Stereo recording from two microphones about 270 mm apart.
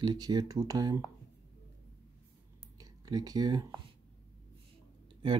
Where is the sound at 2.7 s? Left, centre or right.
Centre.